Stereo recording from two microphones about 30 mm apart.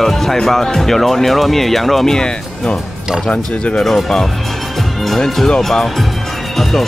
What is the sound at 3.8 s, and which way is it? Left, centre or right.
Speech, centre.